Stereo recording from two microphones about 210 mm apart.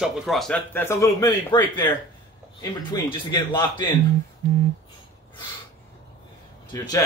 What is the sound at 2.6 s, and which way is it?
A man's voice, 20° left (ahead or behind).